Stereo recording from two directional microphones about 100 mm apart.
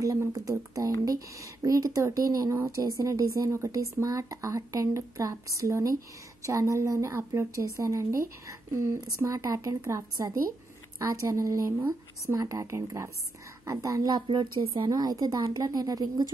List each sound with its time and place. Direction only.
0.0 s a woman's voice: 30° right (ahead or behind)
14.2 s speech: 60° right (ahead or behind)
14.9 s a woman's voice: 40° right (ahead or behind)